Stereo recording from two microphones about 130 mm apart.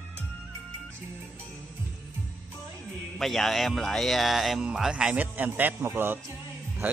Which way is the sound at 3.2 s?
Centre (ahead or behind).